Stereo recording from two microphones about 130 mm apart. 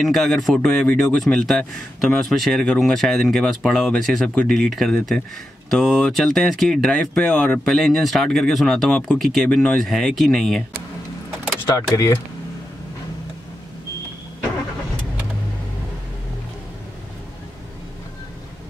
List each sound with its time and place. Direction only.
0.0 s speech: centre (ahead or behind)
11.7 s speech: 25° left (ahead or behind)